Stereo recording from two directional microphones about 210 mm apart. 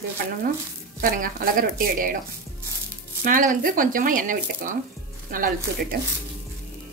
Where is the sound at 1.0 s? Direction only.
40° right (ahead or behind).